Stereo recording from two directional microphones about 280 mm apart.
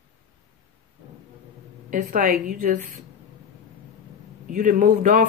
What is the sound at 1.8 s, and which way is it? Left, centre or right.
Speech, right.